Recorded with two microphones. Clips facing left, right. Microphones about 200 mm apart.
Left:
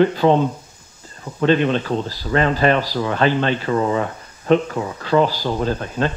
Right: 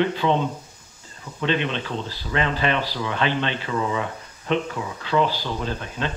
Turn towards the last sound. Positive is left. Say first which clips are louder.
# left 7 dB
turn(degrees=40)  # may be behind; listen again after turning